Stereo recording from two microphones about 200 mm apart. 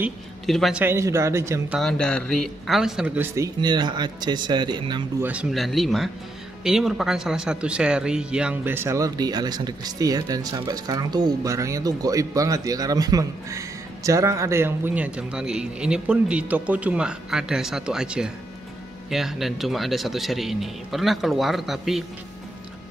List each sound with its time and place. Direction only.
0.0 s speech: centre (ahead or behind)
1.8 s speech: 5° left (ahead or behind)
3.3 s speech: 20° right (ahead or behind)
5.2 s speech: 5° right (ahead or behind)